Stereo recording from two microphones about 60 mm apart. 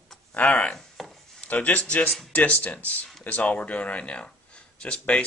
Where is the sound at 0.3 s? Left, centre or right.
Left.